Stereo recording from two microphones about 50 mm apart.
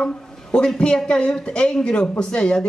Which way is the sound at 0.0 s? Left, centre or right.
Centre.